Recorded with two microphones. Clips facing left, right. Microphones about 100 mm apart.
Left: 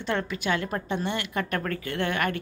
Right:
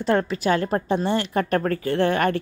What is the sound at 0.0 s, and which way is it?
A woman's voice, 40° right (ahead or behind).